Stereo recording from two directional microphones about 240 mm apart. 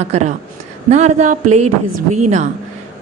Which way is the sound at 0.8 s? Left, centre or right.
Right.